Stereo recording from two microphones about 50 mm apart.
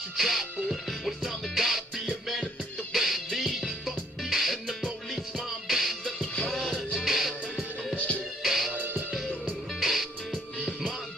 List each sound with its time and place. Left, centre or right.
0.2 s music: centre
8.7 s music: right
9.8 s music: centre